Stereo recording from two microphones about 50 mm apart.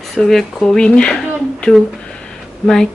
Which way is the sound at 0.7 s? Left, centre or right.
Centre.